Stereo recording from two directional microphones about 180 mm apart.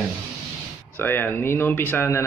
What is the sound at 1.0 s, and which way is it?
Speech, 10° left (ahead or behind).